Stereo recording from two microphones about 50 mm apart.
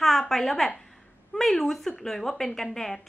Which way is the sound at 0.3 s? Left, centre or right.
Centre.